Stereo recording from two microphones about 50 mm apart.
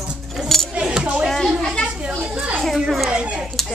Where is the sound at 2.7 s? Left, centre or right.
Centre.